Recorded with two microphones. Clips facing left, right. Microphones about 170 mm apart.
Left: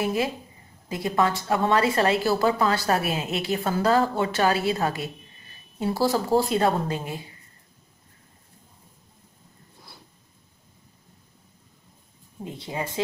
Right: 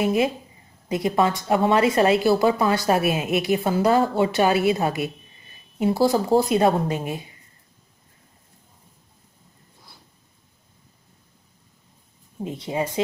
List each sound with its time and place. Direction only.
0.0 s a woman's voice: 20° right (ahead or behind)
12.4 s a woman's voice: 20° right (ahead or behind)